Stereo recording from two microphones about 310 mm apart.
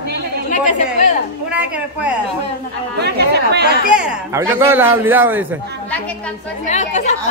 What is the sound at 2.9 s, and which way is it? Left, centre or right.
Speech, right.